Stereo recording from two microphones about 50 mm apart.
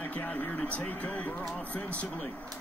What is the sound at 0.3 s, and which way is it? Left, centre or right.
Speech, left.